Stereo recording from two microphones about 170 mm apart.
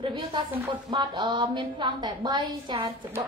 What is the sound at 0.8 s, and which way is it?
A woman's voice, 25° right (ahead or behind).